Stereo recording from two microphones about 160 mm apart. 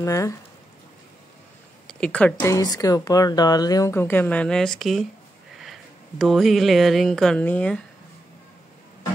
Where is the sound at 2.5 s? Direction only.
25° left (ahead or behind); by 7.8 s 10° left (ahead or behind).